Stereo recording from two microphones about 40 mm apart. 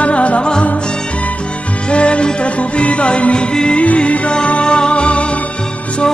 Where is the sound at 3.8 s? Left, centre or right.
Left.